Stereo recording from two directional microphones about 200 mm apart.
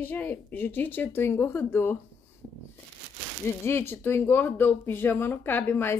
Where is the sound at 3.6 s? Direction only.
10° left (ahead or behind).